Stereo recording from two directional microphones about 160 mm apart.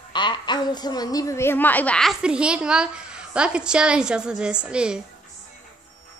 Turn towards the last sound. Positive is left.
turn(degrees=-5)  # may be behind; listen again after turning